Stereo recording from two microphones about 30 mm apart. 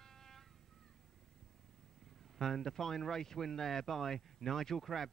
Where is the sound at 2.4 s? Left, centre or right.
Centre.